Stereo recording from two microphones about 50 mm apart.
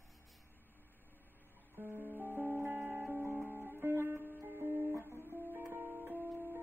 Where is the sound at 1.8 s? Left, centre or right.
Right.